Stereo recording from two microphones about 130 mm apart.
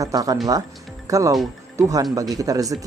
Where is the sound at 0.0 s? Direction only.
25° right (ahead or behind).